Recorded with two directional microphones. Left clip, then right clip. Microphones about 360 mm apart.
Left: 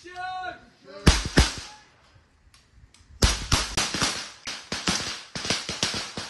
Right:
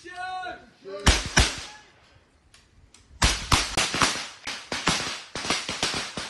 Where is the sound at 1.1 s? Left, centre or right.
Centre.